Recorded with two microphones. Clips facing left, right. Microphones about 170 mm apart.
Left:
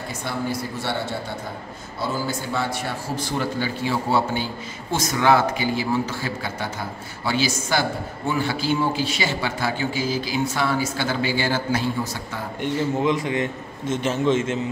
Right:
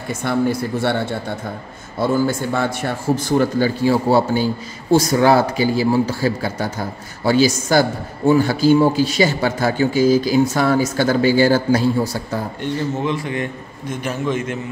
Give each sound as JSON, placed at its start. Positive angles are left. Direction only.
{"t": 0.1, "sound": "speech", "side_deg": -55}
{"t": 2.0, "sound": "a man's voice", "side_deg": -50}
{"t": 12.6, "sound": "a man's voice", "side_deg": 15}